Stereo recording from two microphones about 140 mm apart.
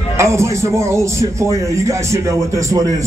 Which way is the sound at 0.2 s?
20° right (ahead or behind).